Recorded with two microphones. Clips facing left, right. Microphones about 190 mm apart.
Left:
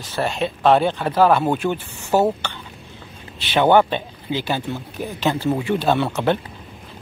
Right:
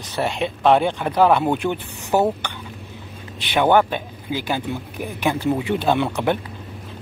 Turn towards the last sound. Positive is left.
turn(degrees=-15)  # may be behind; listen again after turning